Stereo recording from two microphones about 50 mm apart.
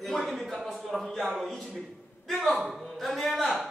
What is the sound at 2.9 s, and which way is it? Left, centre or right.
Speech, centre.